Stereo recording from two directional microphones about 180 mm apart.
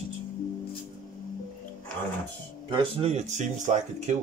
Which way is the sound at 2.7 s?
30° right (ahead or behind).